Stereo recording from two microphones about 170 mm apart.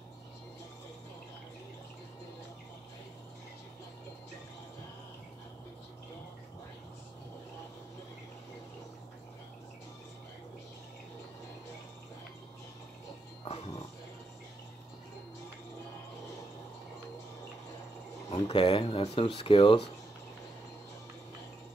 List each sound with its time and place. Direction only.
13.4 s music: 35° left (ahead or behind)
18.3 s speech: 30° left (ahead or behind)